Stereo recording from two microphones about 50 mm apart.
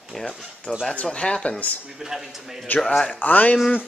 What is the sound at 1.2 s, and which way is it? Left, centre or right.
Speech, centre.